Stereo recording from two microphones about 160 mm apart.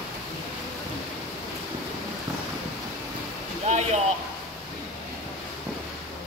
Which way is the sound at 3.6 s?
45° right (ahead or behind).